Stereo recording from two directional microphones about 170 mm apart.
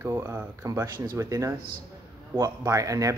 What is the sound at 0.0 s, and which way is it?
Speech, 15° right (ahead or behind).